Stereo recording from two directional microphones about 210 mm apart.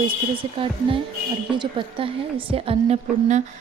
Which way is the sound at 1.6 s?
25° right (ahead or behind).